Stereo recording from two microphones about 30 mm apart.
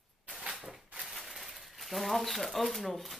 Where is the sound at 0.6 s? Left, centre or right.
Right.